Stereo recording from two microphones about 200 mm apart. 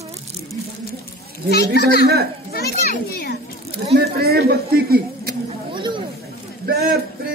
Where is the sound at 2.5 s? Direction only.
50° left (ahead or behind).